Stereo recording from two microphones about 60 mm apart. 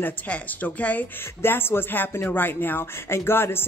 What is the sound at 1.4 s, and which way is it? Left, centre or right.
Speech, left.